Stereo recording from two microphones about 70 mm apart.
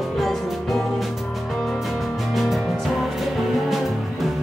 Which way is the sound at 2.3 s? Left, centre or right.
Centre.